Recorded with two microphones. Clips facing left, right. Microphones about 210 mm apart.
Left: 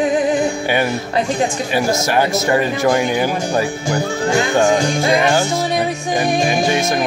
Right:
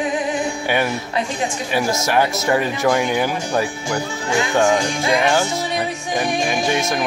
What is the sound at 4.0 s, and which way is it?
Music, 40° left (ahead or behind).